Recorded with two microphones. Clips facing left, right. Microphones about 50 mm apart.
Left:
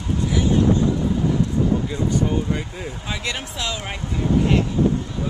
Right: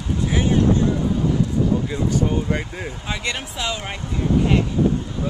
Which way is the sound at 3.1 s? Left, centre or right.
Centre.